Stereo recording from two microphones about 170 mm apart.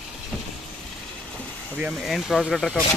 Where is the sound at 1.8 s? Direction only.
5° right (ahead or behind).